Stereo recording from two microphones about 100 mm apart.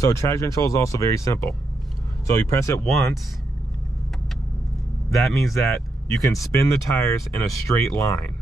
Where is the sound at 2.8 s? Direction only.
Centre (ahead or behind).